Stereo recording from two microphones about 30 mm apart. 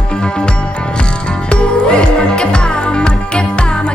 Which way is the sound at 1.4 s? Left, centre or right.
Left.